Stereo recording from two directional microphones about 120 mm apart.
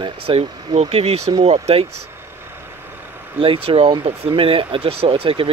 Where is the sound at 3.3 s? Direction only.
50° right (ahead or behind).